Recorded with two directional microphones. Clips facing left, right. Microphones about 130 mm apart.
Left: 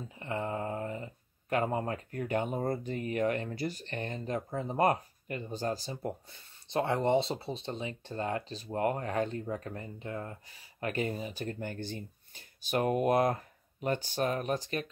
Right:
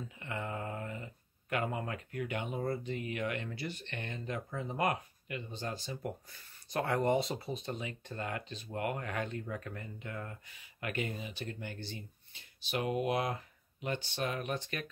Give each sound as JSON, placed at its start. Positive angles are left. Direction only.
{"t": 0.2, "sound": "speech", "side_deg": 30}